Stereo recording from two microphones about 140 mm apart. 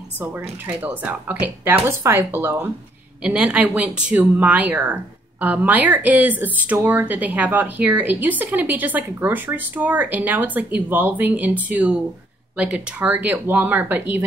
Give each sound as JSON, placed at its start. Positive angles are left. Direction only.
{"t": 0.2, "sound": "speech", "side_deg": -10}